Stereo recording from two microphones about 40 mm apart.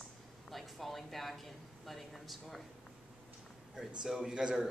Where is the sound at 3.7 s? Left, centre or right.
Centre.